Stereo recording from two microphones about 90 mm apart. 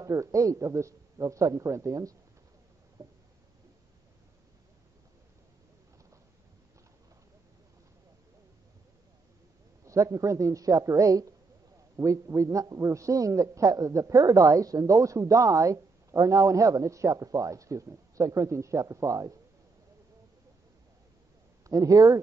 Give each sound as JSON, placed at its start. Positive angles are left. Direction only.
{"t": 0.0, "sound": "a man's voice", "side_deg": -35}
{"t": 3.0, "sound": "a sound", "side_deg": -40}
{"t": 9.8, "sound": "a man's voice", "side_deg": -35}
{"t": 21.6, "sound": "a man's voice", "side_deg": -40}